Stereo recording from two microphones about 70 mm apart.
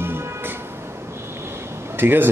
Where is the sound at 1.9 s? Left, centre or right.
Right.